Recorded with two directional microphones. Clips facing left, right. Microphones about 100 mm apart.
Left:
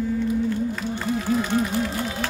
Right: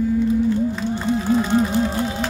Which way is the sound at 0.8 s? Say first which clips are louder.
Right 4 dB; 25° right (ahead or behind).